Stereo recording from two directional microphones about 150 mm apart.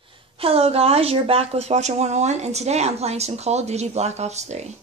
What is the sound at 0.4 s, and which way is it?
A woman's voice, 40° right (ahead or behind).